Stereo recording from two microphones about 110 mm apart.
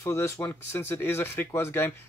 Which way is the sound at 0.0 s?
25° left (ahead or behind).